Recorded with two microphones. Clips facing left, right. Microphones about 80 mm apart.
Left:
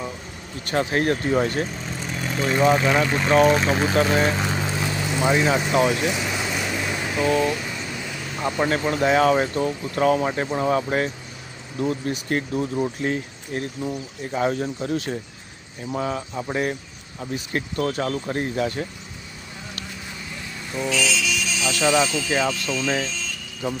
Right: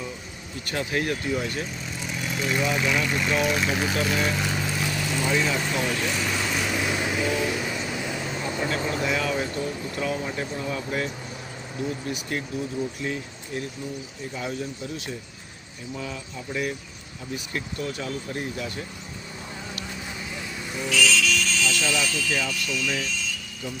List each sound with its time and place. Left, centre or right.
0.7 s speech: left
5.8 s vehicle: centre
8.5 s speech: left
12.3 s speech: left
20.7 s vehicle: centre
21.6 s speech: left